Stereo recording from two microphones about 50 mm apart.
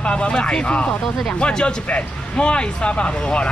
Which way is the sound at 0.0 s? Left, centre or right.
Left.